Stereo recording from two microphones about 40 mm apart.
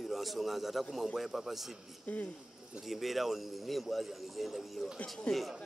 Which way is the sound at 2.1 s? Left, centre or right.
Left.